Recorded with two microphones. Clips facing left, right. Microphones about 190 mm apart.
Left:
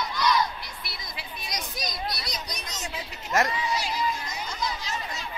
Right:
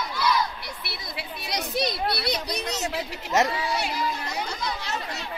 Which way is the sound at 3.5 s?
65° right (ahead or behind).